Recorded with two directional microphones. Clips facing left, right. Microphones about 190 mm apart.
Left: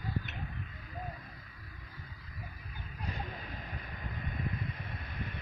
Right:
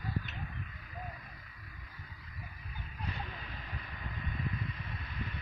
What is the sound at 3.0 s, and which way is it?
Vehicle, 45° left (ahead or behind).